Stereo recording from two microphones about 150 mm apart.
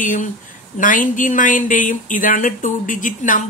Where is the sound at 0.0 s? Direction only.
60° left (ahead or behind).